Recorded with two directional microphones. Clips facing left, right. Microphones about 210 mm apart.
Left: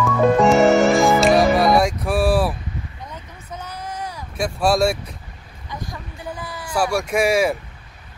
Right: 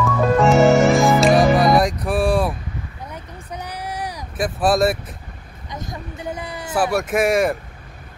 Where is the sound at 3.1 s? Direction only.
15° right (ahead or behind).